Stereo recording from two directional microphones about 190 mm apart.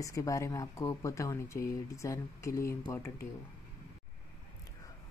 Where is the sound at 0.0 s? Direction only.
15° left (ahead or behind).